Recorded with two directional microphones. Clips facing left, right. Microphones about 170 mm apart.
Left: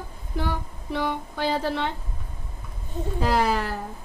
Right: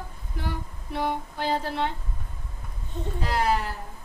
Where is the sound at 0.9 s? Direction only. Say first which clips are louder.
Left 1 dB; 90° left.